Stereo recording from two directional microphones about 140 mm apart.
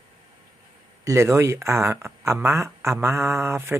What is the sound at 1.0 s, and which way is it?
Speech, 20° right (ahead or behind).